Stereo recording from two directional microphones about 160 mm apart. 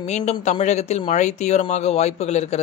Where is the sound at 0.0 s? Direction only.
40° left (ahead or behind).